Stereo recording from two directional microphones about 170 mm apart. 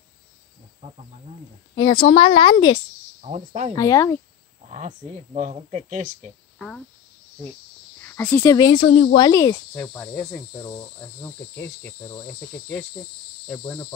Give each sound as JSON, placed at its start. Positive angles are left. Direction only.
{"t": 0.8, "sound": "speech", "side_deg": -45}
{"t": 1.8, "sound": "speech", "side_deg": 30}
{"t": 3.2, "sound": "speech", "side_deg": -40}
{"t": 3.7, "sound": "speech", "side_deg": 20}
{"t": 4.6, "sound": "speech", "side_deg": -40}
{"t": 8.0, "sound": "speech", "side_deg": 15}
{"t": 9.2, "sound": "speech", "side_deg": 20}
{"t": 9.8, "sound": "cricket", "side_deg": 10}